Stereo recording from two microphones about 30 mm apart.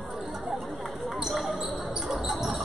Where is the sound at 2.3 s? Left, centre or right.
Centre.